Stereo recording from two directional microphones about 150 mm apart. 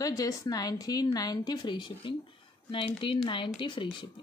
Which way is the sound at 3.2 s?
35° left (ahead or behind).